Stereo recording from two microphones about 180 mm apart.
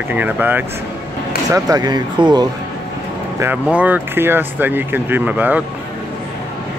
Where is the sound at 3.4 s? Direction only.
10° right (ahead or behind).